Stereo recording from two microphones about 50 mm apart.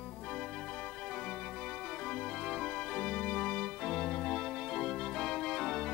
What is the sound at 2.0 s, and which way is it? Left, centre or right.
Organ, centre.